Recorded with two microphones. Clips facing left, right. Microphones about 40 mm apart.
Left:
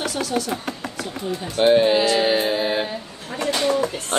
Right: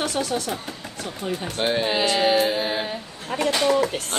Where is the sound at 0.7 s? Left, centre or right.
Left.